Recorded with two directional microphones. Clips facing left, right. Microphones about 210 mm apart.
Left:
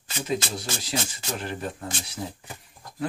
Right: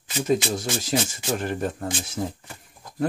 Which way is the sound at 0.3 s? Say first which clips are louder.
Right 6 dB; 45° right (ahead or behind).